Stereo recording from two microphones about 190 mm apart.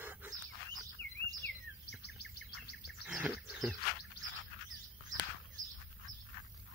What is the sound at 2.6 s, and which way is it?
Bird vocalization, 60° left (ahead or behind).